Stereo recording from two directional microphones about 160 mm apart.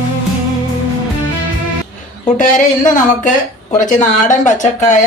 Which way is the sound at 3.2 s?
50° left (ahead or behind).